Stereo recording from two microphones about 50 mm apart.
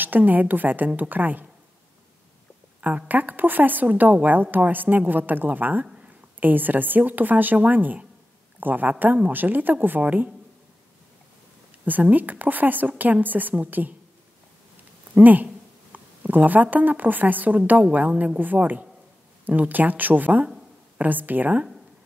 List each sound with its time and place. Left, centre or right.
0.0 s a woman's voice: right
3.1 s a woman's voice: right
12.0 s a woman's voice: right
15.1 s a woman's voice: right